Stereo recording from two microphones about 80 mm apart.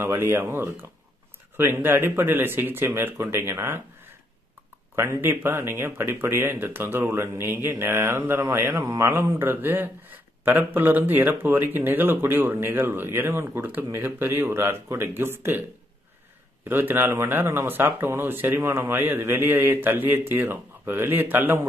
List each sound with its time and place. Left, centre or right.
0.0 s speech: right
4.9 s speech: right
16.6 s speech: right